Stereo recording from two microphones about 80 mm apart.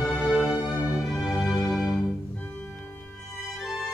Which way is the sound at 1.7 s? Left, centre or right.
Centre.